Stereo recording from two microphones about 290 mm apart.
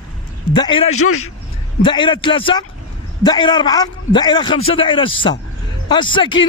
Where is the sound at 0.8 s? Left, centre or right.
Left.